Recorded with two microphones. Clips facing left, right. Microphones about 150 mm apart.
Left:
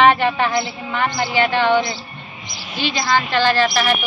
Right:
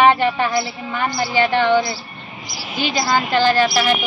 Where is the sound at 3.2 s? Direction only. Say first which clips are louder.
Right 1 dB; 10° right (ahead or behind).